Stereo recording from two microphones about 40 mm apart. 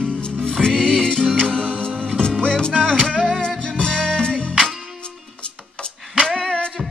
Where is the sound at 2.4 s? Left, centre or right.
Left.